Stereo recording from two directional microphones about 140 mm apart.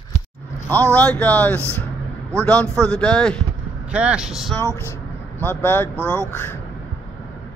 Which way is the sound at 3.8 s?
10° right (ahead or behind).